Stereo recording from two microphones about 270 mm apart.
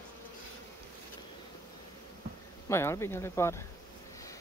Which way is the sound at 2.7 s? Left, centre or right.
Centre.